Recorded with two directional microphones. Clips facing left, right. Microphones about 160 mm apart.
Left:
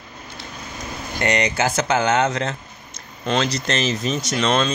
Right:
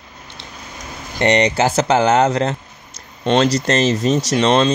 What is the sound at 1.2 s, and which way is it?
Speech, 30° right (ahead or behind).